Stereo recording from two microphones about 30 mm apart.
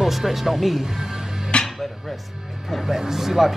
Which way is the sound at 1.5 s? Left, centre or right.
Left.